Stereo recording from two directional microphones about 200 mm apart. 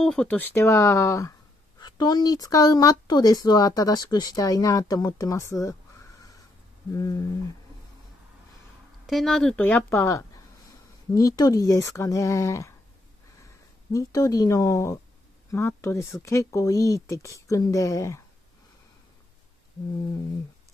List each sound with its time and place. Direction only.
0.0 s speech: 5° left (ahead or behind)
6.9 s speech: 15° left (ahead or behind)
9.0 s speech: centre (ahead or behind)
13.9 s speech: 15° left (ahead or behind)